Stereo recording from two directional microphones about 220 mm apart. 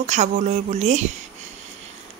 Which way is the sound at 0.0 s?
30° right (ahead or behind).